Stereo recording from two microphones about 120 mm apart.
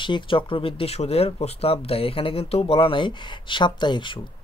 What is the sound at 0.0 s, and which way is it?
Speech, 45° left (ahead or behind).